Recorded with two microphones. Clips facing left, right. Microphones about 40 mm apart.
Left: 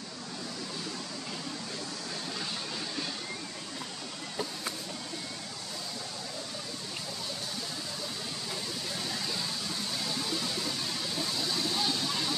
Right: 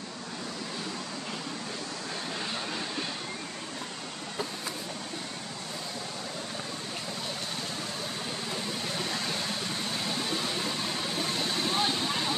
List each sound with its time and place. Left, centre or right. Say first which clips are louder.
8.8 s vehicle: right 3 dB; right